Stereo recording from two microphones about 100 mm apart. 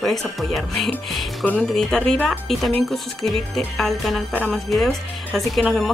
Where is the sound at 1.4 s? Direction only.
10° left (ahead or behind).